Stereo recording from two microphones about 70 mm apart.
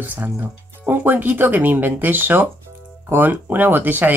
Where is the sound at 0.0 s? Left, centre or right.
Right.